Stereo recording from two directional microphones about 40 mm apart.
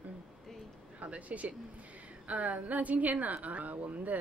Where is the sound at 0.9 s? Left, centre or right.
Right.